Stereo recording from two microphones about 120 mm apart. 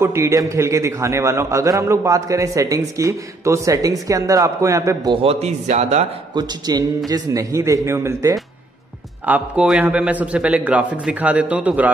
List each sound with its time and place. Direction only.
0.0 s a man's voice: 25° right (ahead or behind)
5.1 s speech: 55° right (ahead or behind)
6.3 s a man's voice: 35° right (ahead or behind)
9.2 s a man's voice: 15° right (ahead or behind)